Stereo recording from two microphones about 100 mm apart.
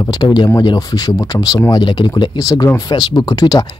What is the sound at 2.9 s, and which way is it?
Speech, 50° left (ahead or behind).